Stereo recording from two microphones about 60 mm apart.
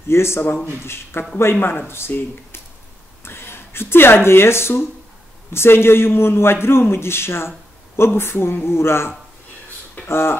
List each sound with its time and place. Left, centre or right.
0.1 s a man's voice: left